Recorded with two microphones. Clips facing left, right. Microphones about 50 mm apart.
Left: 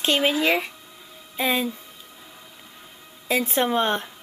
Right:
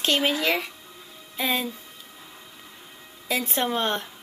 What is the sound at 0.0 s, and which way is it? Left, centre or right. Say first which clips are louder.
Speech: left 2 dB; centre.